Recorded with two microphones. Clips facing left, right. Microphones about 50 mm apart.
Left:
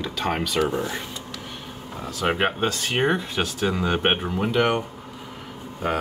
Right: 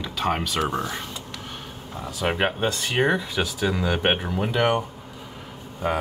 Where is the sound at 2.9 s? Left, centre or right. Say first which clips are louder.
Right 2 dB; left.